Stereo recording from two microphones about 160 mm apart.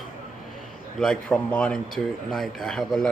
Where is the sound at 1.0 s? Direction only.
5° left (ahead or behind).